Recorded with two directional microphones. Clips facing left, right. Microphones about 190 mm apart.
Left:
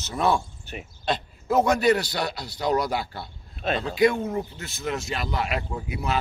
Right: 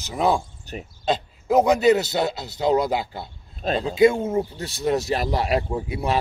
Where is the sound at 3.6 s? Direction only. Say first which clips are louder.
Right 4 dB; 30° right (ahead or behind).